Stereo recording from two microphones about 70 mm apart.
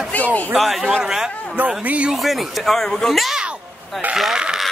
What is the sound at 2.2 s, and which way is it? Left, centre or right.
Speech, centre.